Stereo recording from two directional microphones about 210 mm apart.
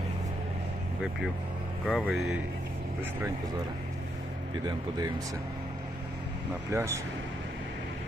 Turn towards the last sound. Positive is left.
turn(degrees=-15)  # may be behind; listen again after turning